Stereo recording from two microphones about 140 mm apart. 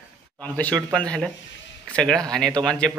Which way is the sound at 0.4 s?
10° left (ahead or behind).